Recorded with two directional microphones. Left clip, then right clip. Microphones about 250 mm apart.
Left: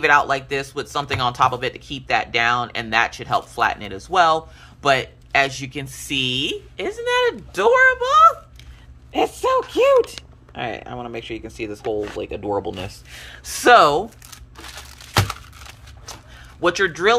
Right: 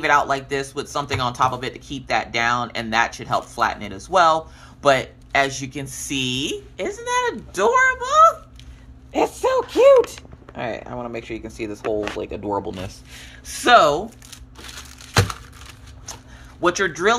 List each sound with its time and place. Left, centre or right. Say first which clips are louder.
0.0 s speech: left 2 dB; centre
16.6 s speech: left 1 dB; centre